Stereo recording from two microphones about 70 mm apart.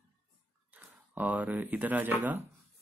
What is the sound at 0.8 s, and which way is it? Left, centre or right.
Speech, right.